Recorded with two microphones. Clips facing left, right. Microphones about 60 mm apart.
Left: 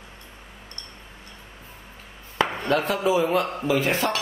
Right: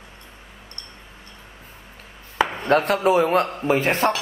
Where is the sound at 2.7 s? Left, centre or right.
Right.